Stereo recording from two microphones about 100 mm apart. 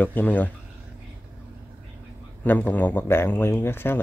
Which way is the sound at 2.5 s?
15° left (ahead or behind).